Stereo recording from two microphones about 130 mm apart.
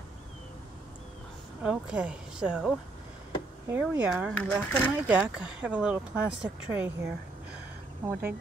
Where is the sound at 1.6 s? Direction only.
10° right (ahead or behind).